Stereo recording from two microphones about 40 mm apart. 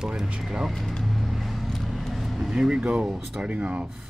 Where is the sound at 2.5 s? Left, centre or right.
Right.